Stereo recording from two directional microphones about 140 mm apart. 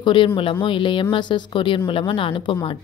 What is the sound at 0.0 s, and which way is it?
A woman's voice, 35° left (ahead or behind).